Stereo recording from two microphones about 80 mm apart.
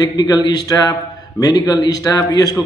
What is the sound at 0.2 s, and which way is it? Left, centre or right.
A man's voice, left.